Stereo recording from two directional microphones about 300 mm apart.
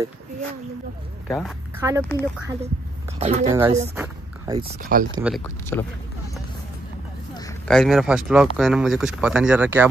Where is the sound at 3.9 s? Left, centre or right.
Centre.